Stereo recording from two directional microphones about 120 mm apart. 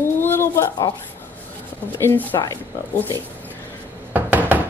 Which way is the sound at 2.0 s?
20° left (ahead or behind).